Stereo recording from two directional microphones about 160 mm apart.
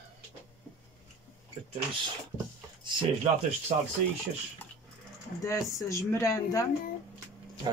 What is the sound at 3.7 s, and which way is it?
Speech, 50° right (ahead or behind).